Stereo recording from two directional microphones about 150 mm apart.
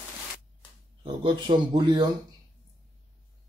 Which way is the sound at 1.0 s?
35° right (ahead or behind).